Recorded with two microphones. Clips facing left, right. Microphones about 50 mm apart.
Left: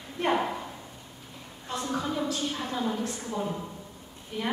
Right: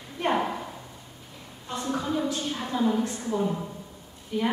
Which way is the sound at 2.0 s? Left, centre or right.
Centre.